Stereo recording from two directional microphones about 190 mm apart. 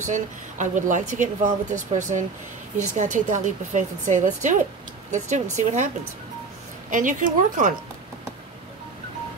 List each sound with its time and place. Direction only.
0.0 s speech: 40° right (ahead or behind)
6.9 s speech: 45° right (ahead or behind)